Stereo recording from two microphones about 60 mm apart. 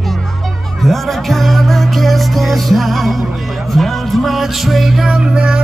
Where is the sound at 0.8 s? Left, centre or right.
Centre.